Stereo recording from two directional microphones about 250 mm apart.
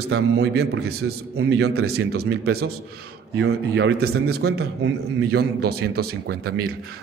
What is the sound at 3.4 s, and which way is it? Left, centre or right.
A man's voice, right.